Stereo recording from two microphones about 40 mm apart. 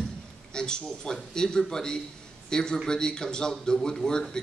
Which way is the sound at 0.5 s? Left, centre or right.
Centre.